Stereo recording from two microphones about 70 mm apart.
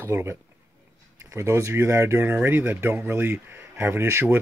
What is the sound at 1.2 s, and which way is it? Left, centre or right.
Speech, right.